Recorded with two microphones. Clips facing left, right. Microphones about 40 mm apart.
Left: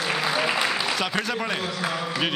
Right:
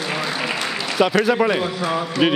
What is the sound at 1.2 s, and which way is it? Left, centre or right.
Speech, centre.